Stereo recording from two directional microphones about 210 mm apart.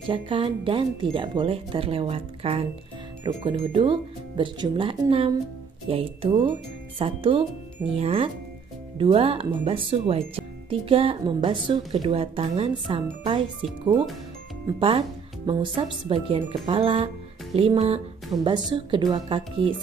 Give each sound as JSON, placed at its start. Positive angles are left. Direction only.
{"t": 0.1, "sound": "speech", "side_deg": -25}
{"t": 14.8, "sound": "speech", "side_deg": -25}